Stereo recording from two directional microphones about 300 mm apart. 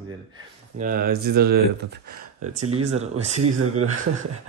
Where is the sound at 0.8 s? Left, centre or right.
Right.